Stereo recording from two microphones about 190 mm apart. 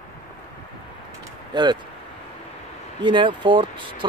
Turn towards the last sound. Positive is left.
turn(degrees=-25)  # may be behind; listen again after turning